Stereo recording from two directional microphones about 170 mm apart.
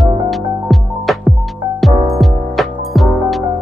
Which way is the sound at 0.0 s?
Centre (ahead or behind).